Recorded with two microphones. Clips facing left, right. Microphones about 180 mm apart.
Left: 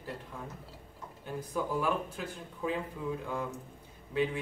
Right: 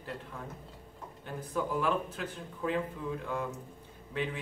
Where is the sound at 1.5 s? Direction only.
10° left (ahead or behind).